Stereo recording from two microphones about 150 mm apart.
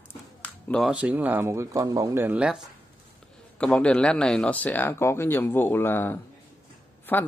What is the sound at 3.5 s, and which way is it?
Speech, 10° left (ahead or behind).